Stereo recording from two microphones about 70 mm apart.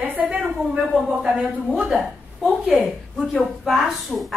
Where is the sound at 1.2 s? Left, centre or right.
Centre.